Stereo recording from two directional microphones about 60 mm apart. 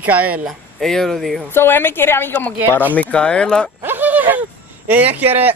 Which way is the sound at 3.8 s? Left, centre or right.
Right.